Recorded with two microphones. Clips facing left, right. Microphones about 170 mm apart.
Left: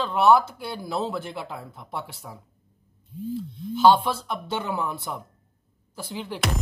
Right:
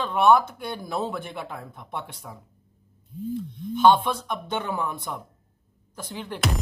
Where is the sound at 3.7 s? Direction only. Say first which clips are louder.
Even; 5° left (ahead or behind).